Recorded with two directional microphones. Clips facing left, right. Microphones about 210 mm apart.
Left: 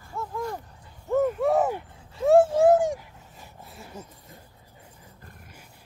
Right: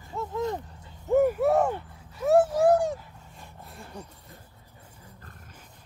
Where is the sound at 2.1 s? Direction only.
25° left (ahead or behind).